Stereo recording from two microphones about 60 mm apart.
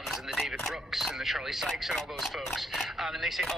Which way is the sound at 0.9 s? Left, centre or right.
Centre.